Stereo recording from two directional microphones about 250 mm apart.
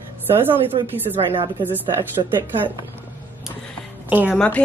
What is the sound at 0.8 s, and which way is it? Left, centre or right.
Speech, centre.